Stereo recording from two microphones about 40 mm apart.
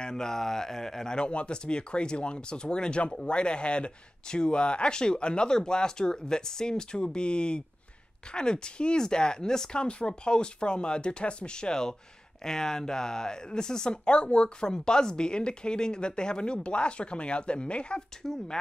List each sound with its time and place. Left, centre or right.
0.0 s speech: centre
18.2 s speech: centre